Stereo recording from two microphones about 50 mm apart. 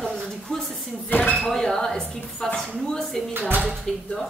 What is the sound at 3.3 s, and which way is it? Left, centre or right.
Speech, right.